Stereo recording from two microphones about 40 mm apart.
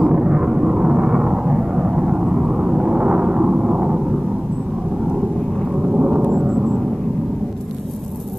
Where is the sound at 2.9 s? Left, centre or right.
Right.